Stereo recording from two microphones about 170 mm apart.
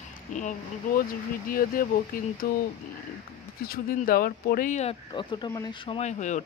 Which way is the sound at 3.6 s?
60° left (ahead or behind).